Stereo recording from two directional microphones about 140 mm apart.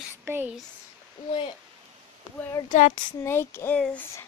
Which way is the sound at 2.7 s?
60° left (ahead or behind).